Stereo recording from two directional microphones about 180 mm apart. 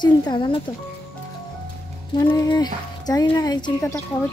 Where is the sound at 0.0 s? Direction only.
25° left (ahead or behind).